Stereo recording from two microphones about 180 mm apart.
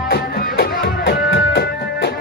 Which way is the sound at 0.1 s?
60° left (ahead or behind).